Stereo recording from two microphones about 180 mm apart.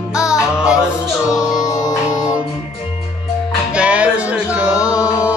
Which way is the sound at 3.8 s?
5° right (ahead or behind).